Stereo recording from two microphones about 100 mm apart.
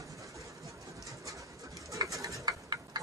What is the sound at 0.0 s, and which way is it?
Bird, 35° right (ahead or behind).